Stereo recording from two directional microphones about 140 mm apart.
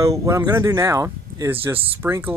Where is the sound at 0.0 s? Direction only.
20° right (ahead or behind).